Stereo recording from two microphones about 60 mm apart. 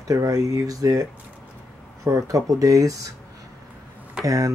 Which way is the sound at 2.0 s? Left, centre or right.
Right.